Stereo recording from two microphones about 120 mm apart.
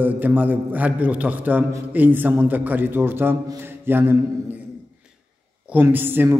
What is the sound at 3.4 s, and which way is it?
Mantra, 20° right (ahead or behind).